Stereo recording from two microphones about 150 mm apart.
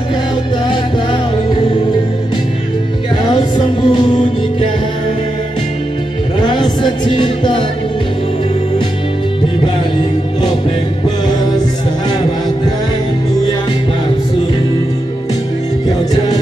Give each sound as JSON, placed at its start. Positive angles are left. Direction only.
{"t": 0.7, "sound": "music", "side_deg": 30}
{"t": 3.3, "sound": "music", "side_deg": 30}
{"t": 6.4, "sound": "music", "side_deg": 30}
{"t": 11.2, "sound": "music", "side_deg": 25}